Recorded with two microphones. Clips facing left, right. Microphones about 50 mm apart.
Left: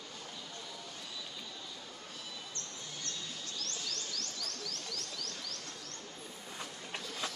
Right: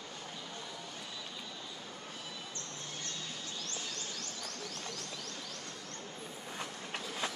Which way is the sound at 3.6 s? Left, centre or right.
Right.